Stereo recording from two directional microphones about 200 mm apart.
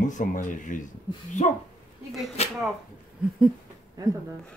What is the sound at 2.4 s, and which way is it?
Speech, 30° left (ahead or behind).